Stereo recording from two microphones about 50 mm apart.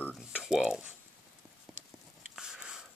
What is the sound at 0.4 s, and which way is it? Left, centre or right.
Cutlery, centre.